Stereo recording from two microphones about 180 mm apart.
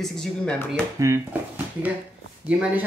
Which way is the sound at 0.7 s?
10° right (ahead or behind).